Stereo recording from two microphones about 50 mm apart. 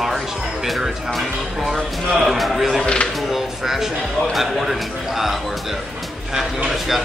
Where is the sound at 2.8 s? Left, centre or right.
Centre.